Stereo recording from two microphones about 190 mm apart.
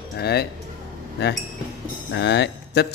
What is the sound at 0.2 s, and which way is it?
Speech, 60° left (ahead or behind).